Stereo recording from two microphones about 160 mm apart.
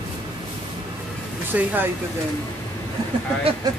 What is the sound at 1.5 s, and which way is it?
Speech, 10° right (ahead or behind).